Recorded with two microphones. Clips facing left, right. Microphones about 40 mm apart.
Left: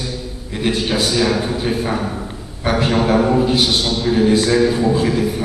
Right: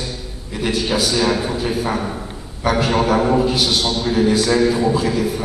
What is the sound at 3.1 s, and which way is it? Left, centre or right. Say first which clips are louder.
Mantra: left 2 dB; centre.